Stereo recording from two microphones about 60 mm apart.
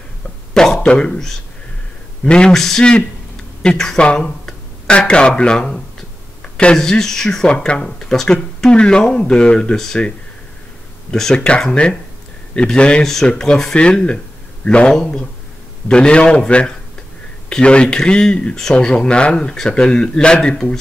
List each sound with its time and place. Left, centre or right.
0.6 s speech: centre
2.5 s speech: centre
7.5 s speech: centre
7.8 s speech: centre
9.8 s speech: centre
11.1 s speech: centre
13.0 s speech: centre